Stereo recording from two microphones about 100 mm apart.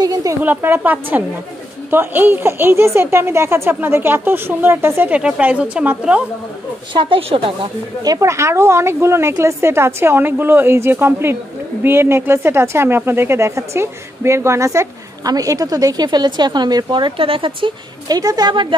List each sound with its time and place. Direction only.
0.0 s a sound: 35° right (ahead or behind)
0.4 s a woman's voice: 20° right (ahead or behind)
6.9 s speech: 55° right (ahead or behind)
8.0 s speech: 35° right (ahead or behind); by 17.7 s 60° right (ahead or behind)
18.0 s a woman's voice: 40° right (ahead or behind)